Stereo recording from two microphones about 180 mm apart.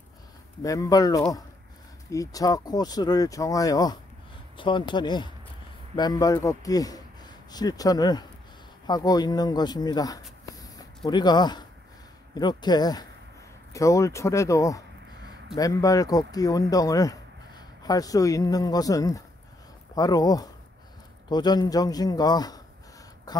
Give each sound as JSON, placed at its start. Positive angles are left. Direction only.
{"t": 0.6, "sound": "speech", "side_deg": 20}